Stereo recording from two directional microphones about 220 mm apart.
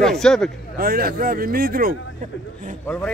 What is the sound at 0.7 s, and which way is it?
Speech, 40° right (ahead or behind).